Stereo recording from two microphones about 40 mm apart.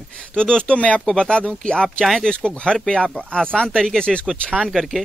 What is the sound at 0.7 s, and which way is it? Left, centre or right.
Speech, left.